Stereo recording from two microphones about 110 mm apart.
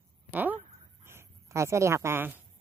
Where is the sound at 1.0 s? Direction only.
25° right (ahead or behind).